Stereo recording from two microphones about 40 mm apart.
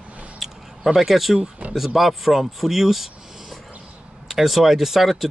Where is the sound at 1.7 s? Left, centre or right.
Centre.